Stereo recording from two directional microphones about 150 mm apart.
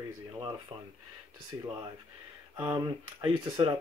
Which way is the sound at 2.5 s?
25° right (ahead or behind).